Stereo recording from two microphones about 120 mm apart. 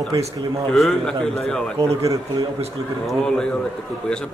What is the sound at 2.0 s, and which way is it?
Speech, 30° right (ahead or behind).